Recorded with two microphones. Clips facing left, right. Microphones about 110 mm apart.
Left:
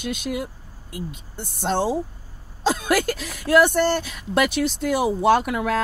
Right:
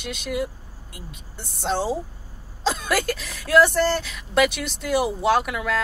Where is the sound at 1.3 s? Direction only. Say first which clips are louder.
Left 2 dB; 55° left (ahead or behind).